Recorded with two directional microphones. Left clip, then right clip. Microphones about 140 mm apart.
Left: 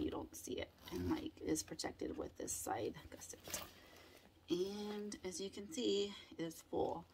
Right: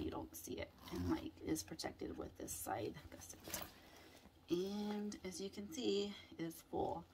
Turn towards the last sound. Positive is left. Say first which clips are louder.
# left 2 dB
turn(degrees=20)  # may be behind; listen again after turning